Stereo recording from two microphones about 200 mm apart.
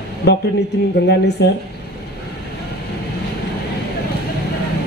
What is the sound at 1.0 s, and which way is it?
Speech, 55° left (ahead or behind).